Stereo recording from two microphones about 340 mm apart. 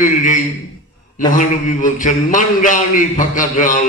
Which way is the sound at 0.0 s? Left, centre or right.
Left.